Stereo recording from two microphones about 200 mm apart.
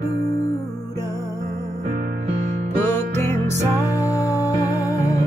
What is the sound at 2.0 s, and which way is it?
Music, 45° right (ahead or behind).